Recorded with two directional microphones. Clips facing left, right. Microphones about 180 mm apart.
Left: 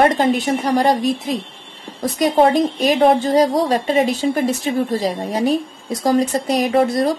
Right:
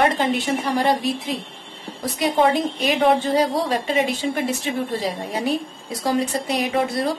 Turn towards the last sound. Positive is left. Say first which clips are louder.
# left 6 dB
turn(degrees=40)  # may be behind; listen again after turning